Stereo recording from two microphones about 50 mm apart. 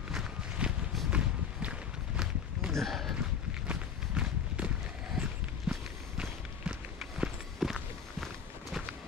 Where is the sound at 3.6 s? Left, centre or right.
Right.